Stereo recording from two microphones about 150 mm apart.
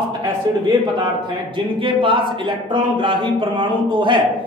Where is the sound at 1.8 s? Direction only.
35° right (ahead or behind).